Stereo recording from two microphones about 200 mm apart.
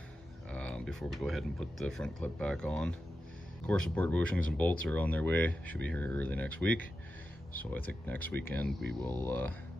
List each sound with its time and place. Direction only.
0.5 s speech: 5° left (ahead or behind)
8.0 s speech: 10° left (ahead or behind)